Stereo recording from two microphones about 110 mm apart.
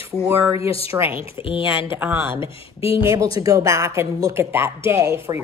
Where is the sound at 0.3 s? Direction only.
25° right (ahead or behind).